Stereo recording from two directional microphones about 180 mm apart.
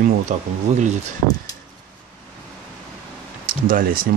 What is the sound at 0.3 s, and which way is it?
Speech, 40° right (ahead or behind).